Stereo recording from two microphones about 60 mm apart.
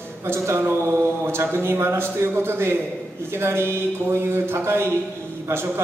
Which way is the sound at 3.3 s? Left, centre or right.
Right.